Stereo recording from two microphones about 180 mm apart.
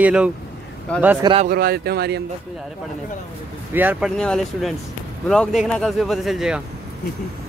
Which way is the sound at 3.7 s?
10° right (ahead or behind).